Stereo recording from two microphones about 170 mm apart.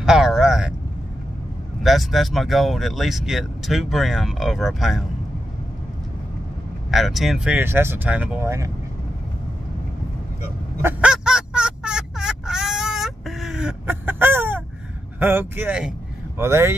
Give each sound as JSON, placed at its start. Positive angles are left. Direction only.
{"t": 0.0, "sound": "a sound", "side_deg": -5}
{"t": 1.8, "sound": "speech", "side_deg": 0}
{"t": 6.9, "sound": "speech", "side_deg": 0}
{"t": 10.8, "sound": "fowl", "side_deg": -10}
{"t": 15.1, "sound": "speech", "side_deg": -10}